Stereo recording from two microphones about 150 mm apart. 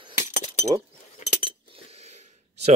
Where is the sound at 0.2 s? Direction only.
55° left (ahead or behind).